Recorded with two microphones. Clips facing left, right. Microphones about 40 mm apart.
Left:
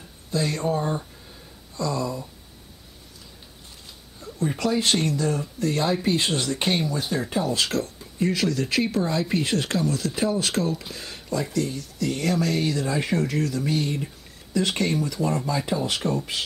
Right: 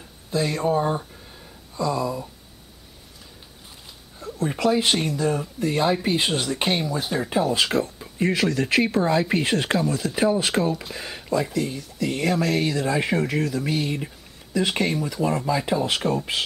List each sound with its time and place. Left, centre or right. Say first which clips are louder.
0.3 s speech: right 2 dB; centre
4.5 s speech: right 2 dB; centre